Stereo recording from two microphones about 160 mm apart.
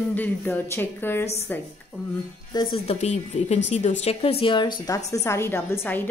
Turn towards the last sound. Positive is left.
turn(degrees=15)  # may be behind; listen again after turning